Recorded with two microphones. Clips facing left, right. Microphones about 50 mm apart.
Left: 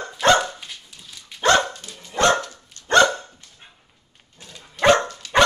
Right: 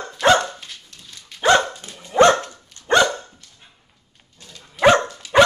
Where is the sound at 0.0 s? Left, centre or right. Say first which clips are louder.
Right 1 dB; centre.